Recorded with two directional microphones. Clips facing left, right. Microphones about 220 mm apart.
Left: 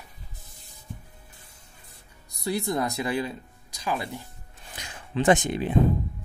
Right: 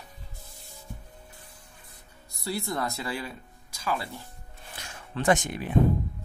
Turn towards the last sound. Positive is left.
turn(degrees=20)  # may be behind; listen again after turning